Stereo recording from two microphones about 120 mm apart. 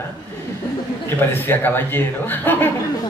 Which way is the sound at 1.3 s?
20° left (ahead or behind).